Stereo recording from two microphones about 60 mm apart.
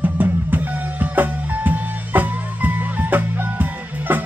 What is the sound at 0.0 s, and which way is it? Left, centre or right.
Music, right.